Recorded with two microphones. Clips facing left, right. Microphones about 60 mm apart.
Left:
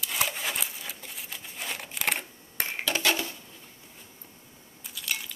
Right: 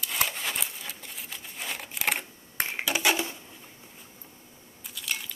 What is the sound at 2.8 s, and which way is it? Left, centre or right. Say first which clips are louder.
Dishes: right 1 dB; centre.